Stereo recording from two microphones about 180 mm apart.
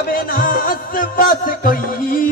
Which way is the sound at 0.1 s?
50° left (ahead or behind).